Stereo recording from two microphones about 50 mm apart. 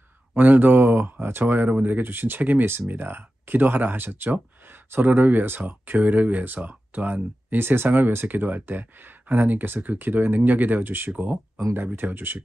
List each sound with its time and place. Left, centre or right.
0.3 s speech: right
11.1 s speech: right
11.7 s speech: right